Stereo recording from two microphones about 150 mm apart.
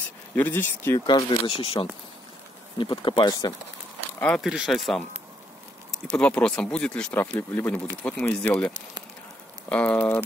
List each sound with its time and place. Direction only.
0.4 s speech: 15° left (ahead or behind)
0.9 s speech: 30° left (ahead or behind)
4.2 s speech: 10° left (ahead or behind)
4.5 s speech: centre (ahead or behind)
6.1 s speech: 5° left (ahead or behind)